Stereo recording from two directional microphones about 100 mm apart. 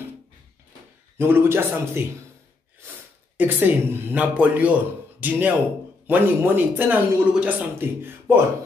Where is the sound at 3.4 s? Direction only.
15° right (ahead or behind).